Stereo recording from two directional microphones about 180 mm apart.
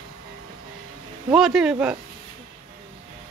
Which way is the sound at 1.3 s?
Centre (ahead or behind).